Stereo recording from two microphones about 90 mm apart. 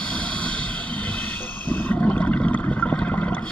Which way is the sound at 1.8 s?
15° left (ahead or behind).